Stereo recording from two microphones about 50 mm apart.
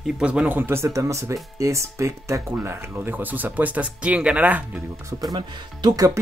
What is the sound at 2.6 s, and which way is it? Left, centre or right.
Speech, right.